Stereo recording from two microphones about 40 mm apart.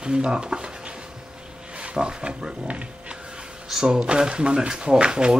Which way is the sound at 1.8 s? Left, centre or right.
Right.